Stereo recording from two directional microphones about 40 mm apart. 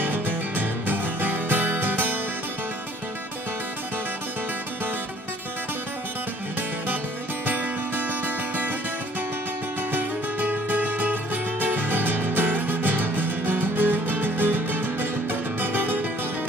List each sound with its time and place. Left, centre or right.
0.0 s music: right
7.4 s music: right
9.9 s music: right